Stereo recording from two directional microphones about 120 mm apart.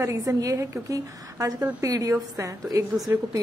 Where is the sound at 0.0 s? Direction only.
25° right (ahead or behind).